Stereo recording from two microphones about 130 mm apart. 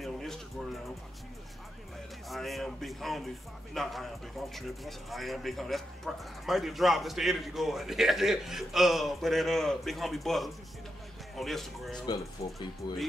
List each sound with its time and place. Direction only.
0.0 s music: centre (ahead or behind)
2.2 s speech: centre (ahead or behind)
12.4 s speech: 50° left (ahead or behind)